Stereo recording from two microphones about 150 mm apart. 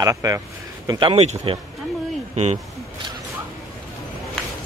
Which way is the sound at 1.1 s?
40° right (ahead or behind).